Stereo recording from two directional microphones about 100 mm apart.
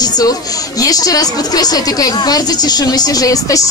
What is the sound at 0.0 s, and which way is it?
Speech, 40° left (ahead or behind).